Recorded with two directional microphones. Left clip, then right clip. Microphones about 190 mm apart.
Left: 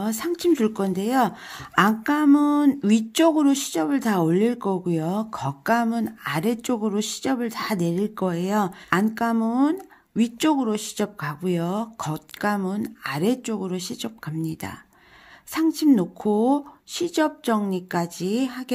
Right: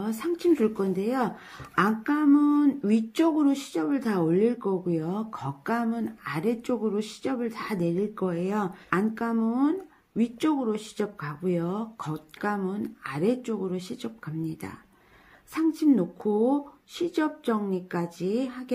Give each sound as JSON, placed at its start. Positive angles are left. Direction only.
{"t": 0.0, "sound": "a woman's voice", "side_deg": 45}